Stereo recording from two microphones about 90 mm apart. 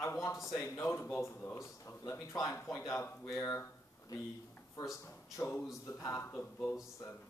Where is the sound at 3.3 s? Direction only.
30° left (ahead or behind).